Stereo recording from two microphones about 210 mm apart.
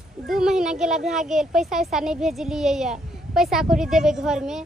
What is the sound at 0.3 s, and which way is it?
A child's voice, centre (ahead or behind).